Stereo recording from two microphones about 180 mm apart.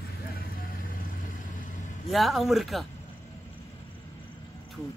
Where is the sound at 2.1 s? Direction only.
Centre (ahead or behind).